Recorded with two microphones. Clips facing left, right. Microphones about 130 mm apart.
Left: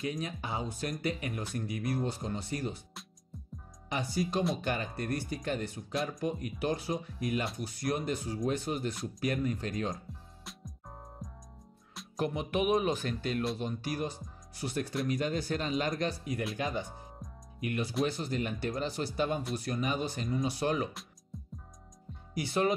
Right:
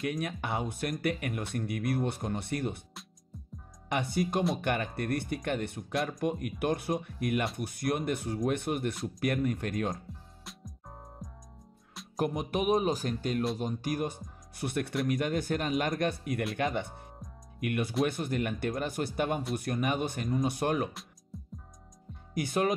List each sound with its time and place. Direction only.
0.2 s speech: 65° right (ahead or behind)
3.9 s speech: 60° right (ahead or behind)
10.4 s music: centre (ahead or behind)
12.2 s speech: 40° right (ahead or behind)
22.3 s speech: 50° right (ahead or behind)